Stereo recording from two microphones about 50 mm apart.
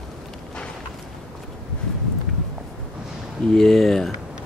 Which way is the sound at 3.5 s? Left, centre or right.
Centre.